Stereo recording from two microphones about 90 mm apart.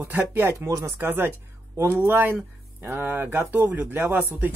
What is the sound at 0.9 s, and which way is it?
Speech, 25° right (ahead or behind).